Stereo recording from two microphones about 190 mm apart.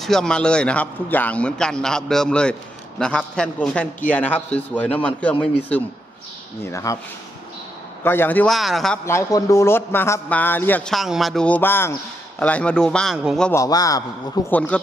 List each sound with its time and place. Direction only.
0.0 s a man's voice: 5° left (ahead or behind)
8.0 s a man's voice: 10° left (ahead or behind)
9.0 s speech: 15° left (ahead or behind); by 13.5 s centre (ahead or behind)
13.5 s speech: 20° left (ahead or behind)
14.7 s speech: 5° left (ahead or behind)